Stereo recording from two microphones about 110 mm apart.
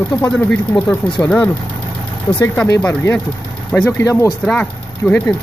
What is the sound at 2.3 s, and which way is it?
Speech, 40° left (ahead or behind).